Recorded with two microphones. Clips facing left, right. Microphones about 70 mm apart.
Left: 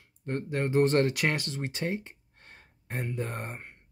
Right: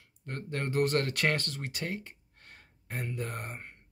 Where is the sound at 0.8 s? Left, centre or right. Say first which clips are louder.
Left 5 dB; left.